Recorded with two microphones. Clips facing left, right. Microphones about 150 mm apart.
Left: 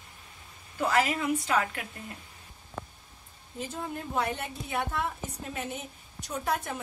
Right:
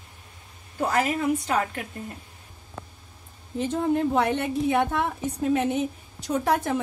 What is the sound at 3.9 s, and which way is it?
Speech, 75° right (ahead or behind).